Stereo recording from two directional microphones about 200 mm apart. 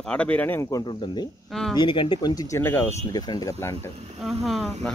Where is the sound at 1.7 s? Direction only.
25° left (ahead or behind).